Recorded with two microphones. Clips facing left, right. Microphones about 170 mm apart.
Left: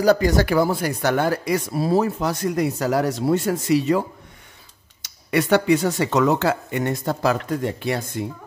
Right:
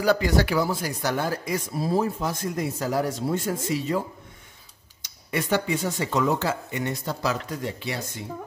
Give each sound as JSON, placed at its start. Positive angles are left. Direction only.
{"t": 0.0, "sound": "speech", "side_deg": 45}
{"t": 5.3, "sound": "speech", "side_deg": 80}